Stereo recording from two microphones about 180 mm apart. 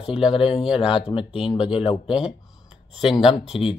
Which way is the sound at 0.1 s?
30° left (ahead or behind).